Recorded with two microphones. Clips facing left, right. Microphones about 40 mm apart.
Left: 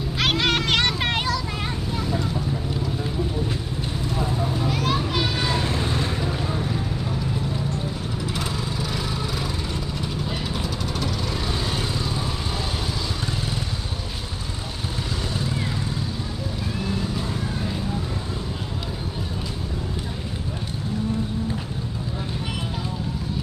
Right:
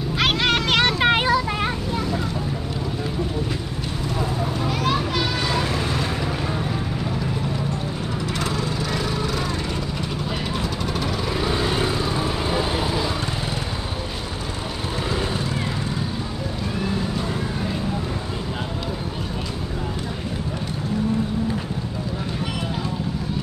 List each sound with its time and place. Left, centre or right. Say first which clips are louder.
0.2 s vehicle: right 1 dB; centre; by 2.0 s right
4.6 s children playing: right 2 dB; centre
11.0 s vehicle: right 4 dB; centre